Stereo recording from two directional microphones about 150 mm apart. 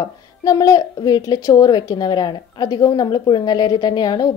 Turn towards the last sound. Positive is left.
turn(degrees=30)  # may be behind; listen again after turning